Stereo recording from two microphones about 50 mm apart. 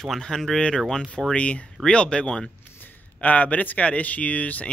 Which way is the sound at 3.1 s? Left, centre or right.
Left.